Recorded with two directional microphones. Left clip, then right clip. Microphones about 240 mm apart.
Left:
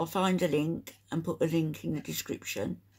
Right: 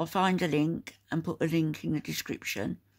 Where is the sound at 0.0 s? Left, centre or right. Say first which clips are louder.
Right 1 dB; right.